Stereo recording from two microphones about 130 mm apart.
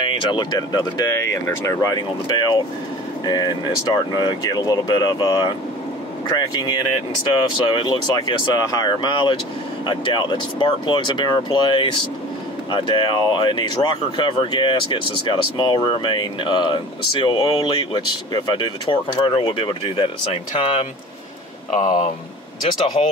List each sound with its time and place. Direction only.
0.0 s speech: 40° left (ahead or behind)
21.7 s speech: 80° left